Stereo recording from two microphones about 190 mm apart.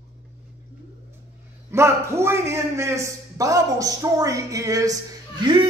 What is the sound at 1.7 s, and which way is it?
A man's voice, 15° right (ahead or behind).